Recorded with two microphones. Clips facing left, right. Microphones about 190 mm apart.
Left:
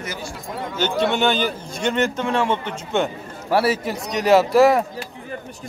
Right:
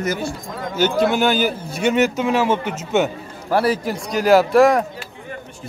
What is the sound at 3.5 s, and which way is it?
Speech, 5° left (ahead or behind).